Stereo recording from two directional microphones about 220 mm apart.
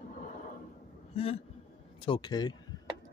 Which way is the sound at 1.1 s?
25° left (ahead or behind).